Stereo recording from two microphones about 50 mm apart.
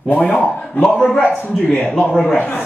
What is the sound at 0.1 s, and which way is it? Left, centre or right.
Speech, left.